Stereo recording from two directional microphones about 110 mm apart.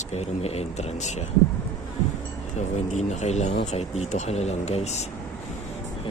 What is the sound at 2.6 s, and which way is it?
Speech, 90° left.